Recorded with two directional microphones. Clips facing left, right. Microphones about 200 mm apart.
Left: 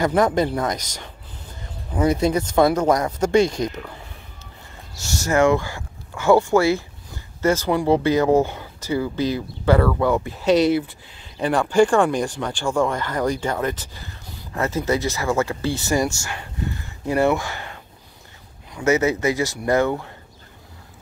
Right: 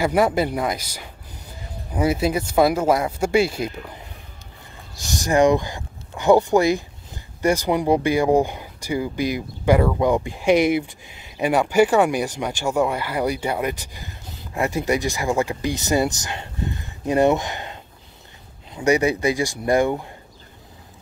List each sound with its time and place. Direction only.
0.0 s speech: 10° right (ahead or behind)